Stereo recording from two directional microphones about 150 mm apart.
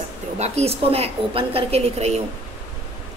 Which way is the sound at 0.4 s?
45° right (ahead or behind).